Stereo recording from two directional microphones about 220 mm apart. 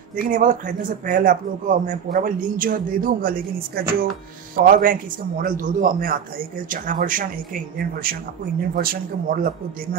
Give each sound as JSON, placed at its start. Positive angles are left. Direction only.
{"t": 0.1, "sound": "speech", "side_deg": -40}